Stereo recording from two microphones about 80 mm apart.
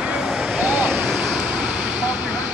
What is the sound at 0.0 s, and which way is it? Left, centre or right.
Vehicle, centre.